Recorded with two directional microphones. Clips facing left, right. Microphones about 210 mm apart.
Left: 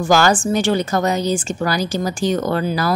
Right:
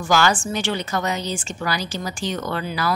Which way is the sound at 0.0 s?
40° left (ahead or behind).